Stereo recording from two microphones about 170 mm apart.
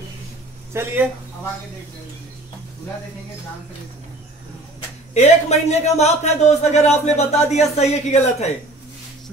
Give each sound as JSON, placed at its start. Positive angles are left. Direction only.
{"t": 0.7, "sound": "speech", "side_deg": -15}
{"t": 5.1, "sound": "a man's voice", "side_deg": 40}